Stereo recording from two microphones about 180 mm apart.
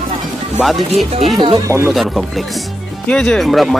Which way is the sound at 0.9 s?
35° right (ahead or behind).